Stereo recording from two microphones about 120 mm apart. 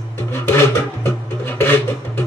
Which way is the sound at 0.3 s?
20° left (ahead or behind).